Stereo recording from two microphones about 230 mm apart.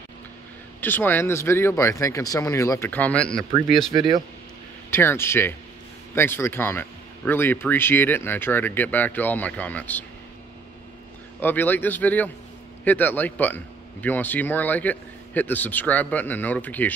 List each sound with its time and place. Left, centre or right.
0.7 s speech: centre
3.9 s speech: centre
4.9 s speech: centre
11.3 s speech: centre